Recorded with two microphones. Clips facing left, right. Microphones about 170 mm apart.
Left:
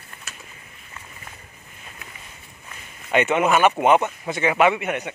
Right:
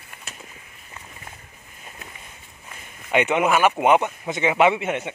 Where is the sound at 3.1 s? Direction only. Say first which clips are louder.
Left 1 dB; 15° right (ahead or behind).